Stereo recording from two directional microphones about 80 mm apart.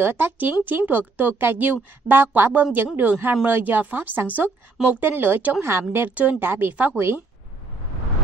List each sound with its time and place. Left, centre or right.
0.0 s a woman's voice: right